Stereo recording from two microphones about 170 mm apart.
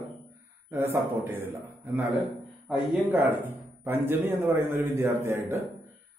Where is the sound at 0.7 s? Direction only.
10° right (ahead or behind).